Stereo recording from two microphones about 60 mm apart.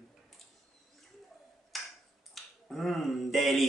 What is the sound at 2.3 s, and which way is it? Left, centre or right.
Speech, centre.